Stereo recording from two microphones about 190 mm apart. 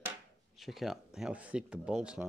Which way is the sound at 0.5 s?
Centre (ahead or behind).